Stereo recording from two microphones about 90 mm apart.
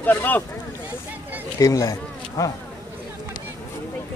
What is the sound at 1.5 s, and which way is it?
Speech, 40° left (ahead or behind).